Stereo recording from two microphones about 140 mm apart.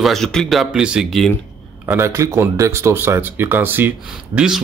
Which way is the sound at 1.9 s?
20° right (ahead or behind).